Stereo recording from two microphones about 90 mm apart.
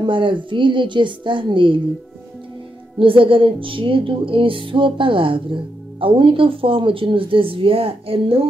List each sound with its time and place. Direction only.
0.0 s a woman's voice: 65° right (ahead or behind)
3.0 s music: 80° right
5.9 s speech: 75° right (ahead or behind)